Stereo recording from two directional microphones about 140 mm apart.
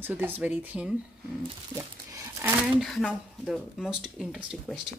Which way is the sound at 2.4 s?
Centre (ahead or behind).